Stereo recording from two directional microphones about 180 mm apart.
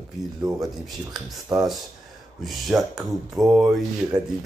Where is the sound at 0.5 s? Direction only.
20° right (ahead or behind).